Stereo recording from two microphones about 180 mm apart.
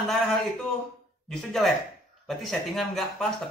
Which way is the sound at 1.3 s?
Centre (ahead or behind).